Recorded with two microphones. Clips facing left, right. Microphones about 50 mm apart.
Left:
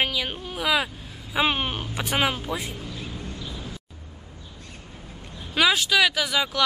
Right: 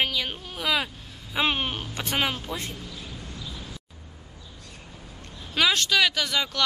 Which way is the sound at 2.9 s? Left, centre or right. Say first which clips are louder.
Left 4 dB; left.